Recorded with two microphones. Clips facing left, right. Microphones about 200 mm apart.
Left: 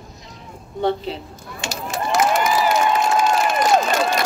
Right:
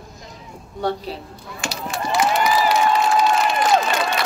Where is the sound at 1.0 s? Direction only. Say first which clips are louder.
Left 2 dB; centre (ahead or behind).